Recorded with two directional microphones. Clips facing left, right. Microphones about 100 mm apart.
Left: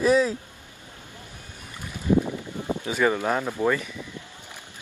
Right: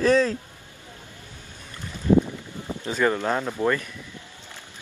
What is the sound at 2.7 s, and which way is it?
Speech, 10° left (ahead or behind).